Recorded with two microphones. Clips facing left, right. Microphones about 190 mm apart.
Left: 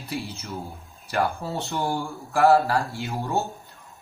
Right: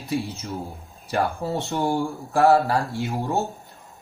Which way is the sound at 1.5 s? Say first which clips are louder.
Right 3 dB; 15° right (ahead or behind).